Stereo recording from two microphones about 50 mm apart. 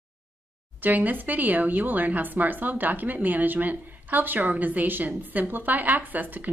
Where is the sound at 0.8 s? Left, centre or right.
Right.